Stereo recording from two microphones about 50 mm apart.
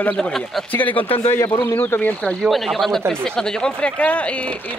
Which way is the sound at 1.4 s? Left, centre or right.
Left.